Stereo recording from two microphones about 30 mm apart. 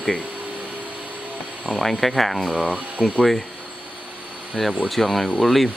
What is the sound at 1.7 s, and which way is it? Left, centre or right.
Speech, centre.